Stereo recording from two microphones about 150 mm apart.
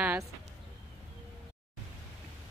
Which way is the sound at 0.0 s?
10° right (ahead or behind).